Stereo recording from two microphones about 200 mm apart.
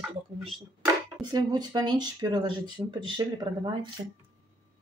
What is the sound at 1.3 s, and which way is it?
Speech, 20° right (ahead or behind).